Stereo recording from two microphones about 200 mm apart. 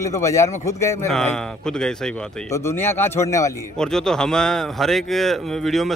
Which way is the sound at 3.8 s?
5° left (ahead or behind).